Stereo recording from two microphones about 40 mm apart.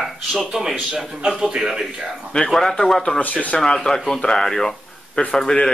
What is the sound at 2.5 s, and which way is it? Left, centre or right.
Speech, centre.